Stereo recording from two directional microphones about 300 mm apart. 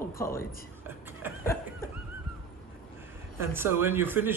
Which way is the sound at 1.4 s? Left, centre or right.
Centre.